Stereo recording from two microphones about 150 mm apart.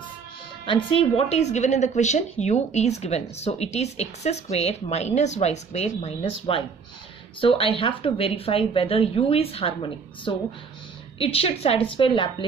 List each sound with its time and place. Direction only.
0.7 s a woman's voice: 35° left (ahead or behind)